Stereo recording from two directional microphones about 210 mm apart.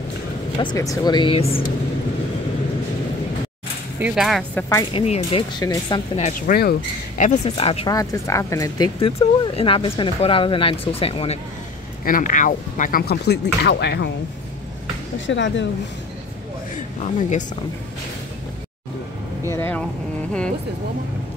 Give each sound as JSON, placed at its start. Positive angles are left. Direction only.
{"t": 0.6, "sound": "speech", "side_deg": 20}
{"t": 4.0, "sound": "speech", "side_deg": 0}
{"t": 4.9, "sound": "speech", "side_deg": 30}
{"t": 7.9, "sound": "speech", "side_deg": 15}
{"t": 12.0, "sound": "speech", "side_deg": 40}
{"t": 15.1, "sound": "speech", "side_deg": 60}
{"t": 16.7, "sound": "speech", "side_deg": 35}
{"t": 19.4, "sound": "vehicle", "side_deg": 10}